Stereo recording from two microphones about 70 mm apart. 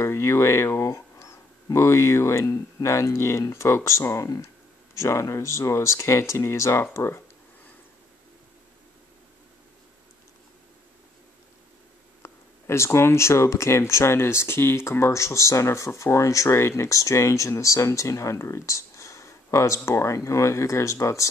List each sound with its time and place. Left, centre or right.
0.0 s speech: left
12.2 s speech: left